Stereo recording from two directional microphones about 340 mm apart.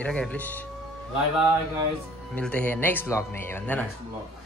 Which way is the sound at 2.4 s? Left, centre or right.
Centre.